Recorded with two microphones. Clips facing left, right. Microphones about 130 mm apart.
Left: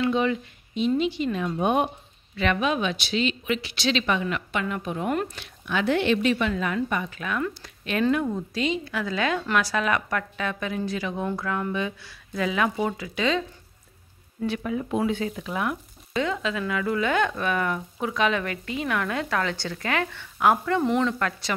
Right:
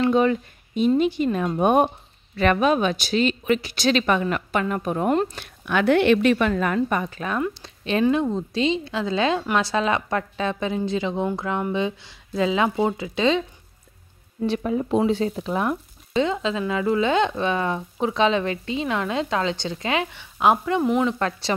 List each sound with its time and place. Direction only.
0.0 s speech: 45° right (ahead or behind); by 13.4 s 25° right (ahead or behind)
14.4 s speech: 30° right (ahead or behind)